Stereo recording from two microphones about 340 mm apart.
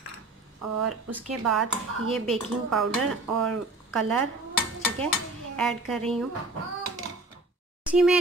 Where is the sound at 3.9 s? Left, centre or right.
Centre.